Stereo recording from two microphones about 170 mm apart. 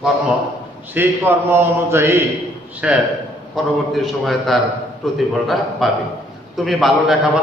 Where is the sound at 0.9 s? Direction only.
10° right (ahead or behind).